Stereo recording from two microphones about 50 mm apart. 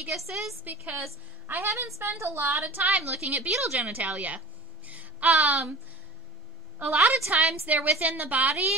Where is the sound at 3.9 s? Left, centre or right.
Right.